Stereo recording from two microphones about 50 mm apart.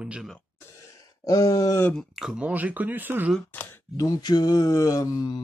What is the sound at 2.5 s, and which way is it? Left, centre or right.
Speech, right.